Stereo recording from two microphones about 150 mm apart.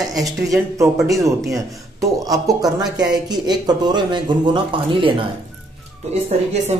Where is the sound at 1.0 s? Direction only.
20° right (ahead or behind).